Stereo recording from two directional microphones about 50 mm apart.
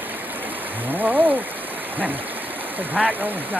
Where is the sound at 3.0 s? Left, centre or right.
Centre.